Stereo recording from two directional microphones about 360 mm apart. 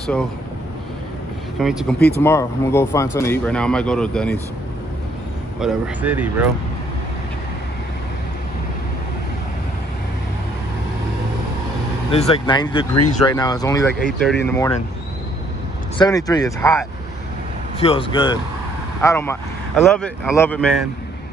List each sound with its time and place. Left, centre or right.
1.6 s speech: centre
2.0 s speech: left
2.2 s speech: centre
5.6 s speech: centre
12.1 s speech: centre
16.0 s speech: centre